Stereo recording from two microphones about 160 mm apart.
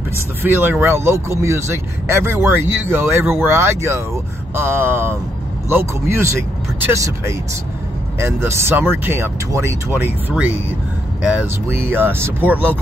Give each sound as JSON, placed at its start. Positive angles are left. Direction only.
{"t": 0.4, "sound": "speech", "side_deg": -10}